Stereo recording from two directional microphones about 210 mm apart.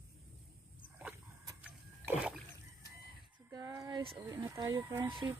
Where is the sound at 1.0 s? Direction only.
10° right (ahead or behind).